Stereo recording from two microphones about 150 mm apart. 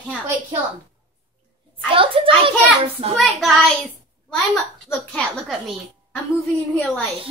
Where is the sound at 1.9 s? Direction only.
35° right (ahead or behind).